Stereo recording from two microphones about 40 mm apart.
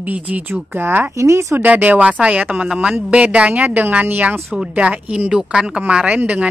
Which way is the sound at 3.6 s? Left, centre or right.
Right.